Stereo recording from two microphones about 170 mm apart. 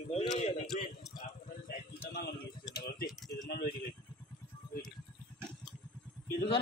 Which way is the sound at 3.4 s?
70° left (ahead or behind).